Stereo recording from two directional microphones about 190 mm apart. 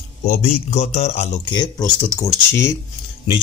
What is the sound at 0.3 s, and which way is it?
Speech, 40° left (ahead or behind).